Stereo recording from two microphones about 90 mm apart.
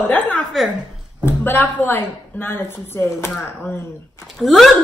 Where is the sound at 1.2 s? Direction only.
20° left (ahead or behind).